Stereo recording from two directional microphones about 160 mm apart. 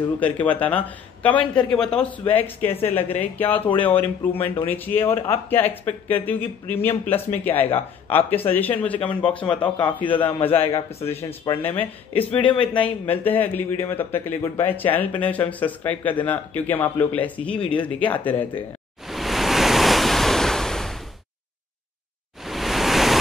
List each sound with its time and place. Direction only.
0.2 s a man's voice: 10° left (ahead or behind)
10.9 s speech: 40° left (ahead or behind)
11.5 s a man's voice: 10° left (ahead or behind)
19.0 s waves: centre (ahead or behind)
22.4 s pink noise: centre (ahead or behind)